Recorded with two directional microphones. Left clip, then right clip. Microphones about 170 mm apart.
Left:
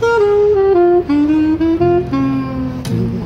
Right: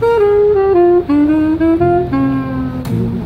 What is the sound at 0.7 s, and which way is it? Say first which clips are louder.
Music: right 1 dB; 5° right (ahead or behind).